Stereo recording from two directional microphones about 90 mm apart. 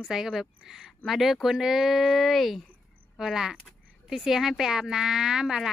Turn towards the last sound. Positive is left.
turn(degrees=-5)  # may be behind; listen again after turning